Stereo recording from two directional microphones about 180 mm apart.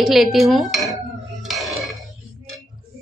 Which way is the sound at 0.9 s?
Centre (ahead or behind).